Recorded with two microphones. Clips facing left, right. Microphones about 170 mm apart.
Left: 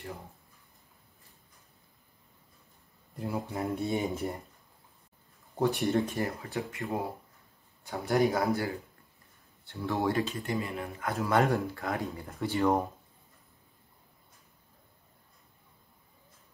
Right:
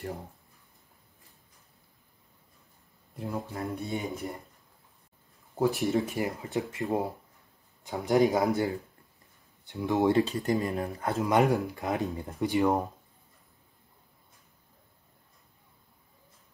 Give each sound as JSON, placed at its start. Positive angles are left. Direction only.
{"t": 3.2, "sound": "speech", "side_deg": 0}
{"t": 3.5, "sound": "speech", "side_deg": 20}
{"t": 5.6, "sound": "speech", "side_deg": 0}
{"t": 6.1, "sound": "speech", "side_deg": -20}
{"t": 9.7, "sound": "speech", "side_deg": -15}
{"t": 11.2, "sound": "speech", "side_deg": -15}